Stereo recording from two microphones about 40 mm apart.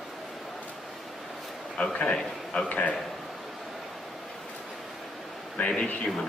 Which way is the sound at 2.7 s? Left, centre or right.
Left.